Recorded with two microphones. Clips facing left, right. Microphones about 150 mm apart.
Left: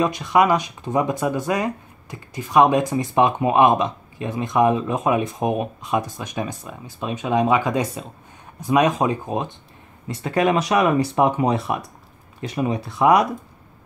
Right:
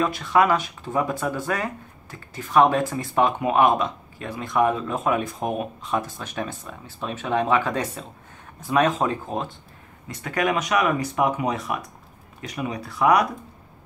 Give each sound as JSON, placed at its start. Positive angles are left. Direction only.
{"t": 0.0, "sound": "speech", "side_deg": 15}
{"t": 10.0, "sound": "speech", "side_deg": 25}